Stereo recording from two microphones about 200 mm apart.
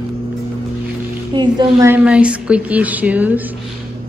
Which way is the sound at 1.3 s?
20° right (ahead or behind).